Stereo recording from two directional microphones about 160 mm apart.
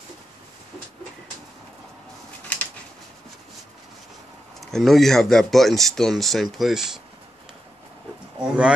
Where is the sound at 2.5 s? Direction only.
10° left (ahead or behind).